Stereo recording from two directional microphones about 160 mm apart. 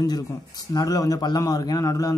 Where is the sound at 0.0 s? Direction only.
25° left (ahead or behind).